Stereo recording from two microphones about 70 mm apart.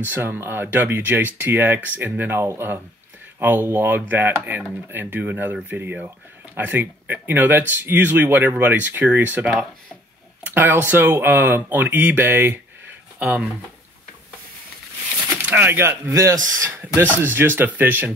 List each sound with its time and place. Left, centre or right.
0.0 s speech: right
15.2 s a sound: right
15.6 s speech: right
16.1 s speech: right
17.2 s speech: right